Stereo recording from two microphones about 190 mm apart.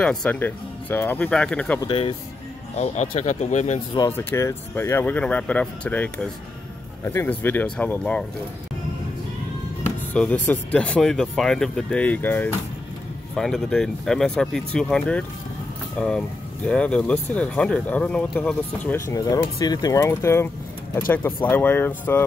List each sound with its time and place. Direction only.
0.0 s speech: 5° left (ahead or behind)
1.8 s speech: 25° left (ahead or behind)
4.1 s speech: 10° left (ahead or behind)
9.8 s speech: 10° left (ahead or behind)
21.5 s speech: 10° left (ahead or behind)